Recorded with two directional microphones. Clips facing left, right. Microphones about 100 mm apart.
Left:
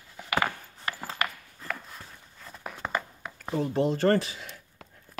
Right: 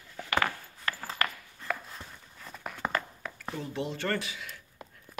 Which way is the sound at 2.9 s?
15° left (ahead or behind).